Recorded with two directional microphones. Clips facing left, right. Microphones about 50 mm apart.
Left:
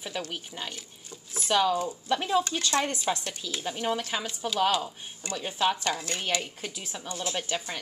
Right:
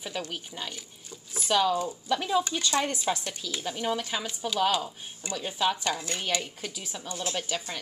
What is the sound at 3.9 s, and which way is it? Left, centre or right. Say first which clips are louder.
Speech: even; centre.